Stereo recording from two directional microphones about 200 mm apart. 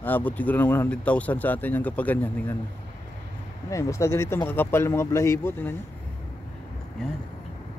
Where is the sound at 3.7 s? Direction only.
15° left (ahead or behind).